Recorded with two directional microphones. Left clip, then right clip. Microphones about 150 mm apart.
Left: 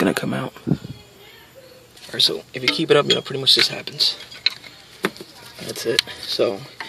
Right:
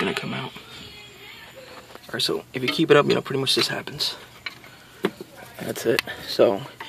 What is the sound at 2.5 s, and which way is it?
Speech, 10° right (ahead or behind).